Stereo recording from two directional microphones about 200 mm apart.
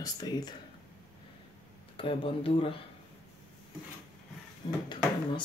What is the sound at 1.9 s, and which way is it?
Speech, 25° left (ahead or behind).